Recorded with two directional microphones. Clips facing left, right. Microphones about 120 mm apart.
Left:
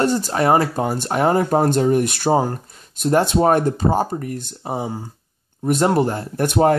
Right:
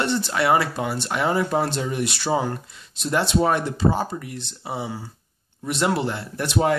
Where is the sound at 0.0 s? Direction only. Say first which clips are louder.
Left 4 dB; 40° left (ahead or behind).